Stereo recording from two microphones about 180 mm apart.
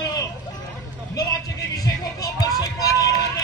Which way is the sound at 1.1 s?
20° left (ahead or behind).